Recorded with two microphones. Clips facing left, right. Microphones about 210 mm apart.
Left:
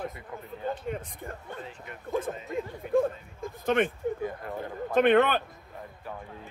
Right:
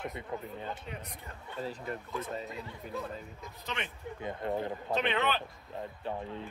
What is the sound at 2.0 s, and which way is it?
Speech, 50° left (ahead or behind).